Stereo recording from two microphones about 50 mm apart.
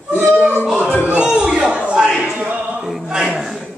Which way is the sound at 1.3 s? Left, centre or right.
Centre.